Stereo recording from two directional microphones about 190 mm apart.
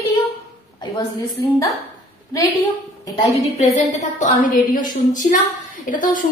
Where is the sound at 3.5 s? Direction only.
35° left (ahead or behind).